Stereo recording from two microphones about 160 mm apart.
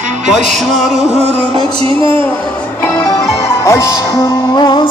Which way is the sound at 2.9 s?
20° left (ahead or behind).